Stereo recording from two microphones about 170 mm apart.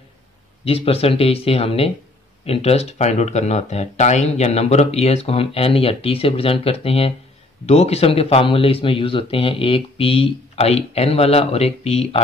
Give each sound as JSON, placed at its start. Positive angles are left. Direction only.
{"t": 0.7, "sound": "speech", "side_deg": 35}